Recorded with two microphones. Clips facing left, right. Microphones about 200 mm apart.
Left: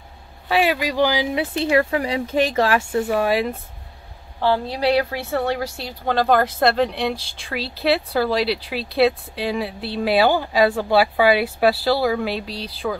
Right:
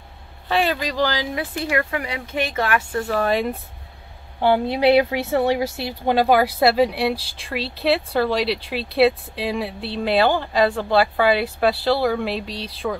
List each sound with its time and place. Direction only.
0.5 s speech: 5° left (ahead or behind)
1.6 s speech: 30° left (ahead or behind)
2.9 s speech: 15° left (ahead or behind)
4.4 s speech: 15° right (ahead or behind); by 12.9 s centre (ahead or behind)